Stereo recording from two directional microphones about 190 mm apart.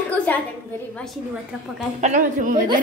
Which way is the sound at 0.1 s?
5° left (ahead or behind).